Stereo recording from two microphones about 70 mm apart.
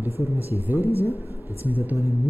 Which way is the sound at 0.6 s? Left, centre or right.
Right.